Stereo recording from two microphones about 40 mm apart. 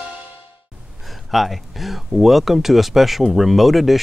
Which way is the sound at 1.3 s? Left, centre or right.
Centre.